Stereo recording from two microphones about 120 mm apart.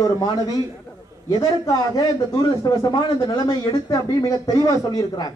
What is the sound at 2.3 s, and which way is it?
A man's voice, 30° left (ahead or behind).